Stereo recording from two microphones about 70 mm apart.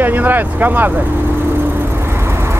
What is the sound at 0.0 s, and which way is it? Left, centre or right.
Vehicle, right.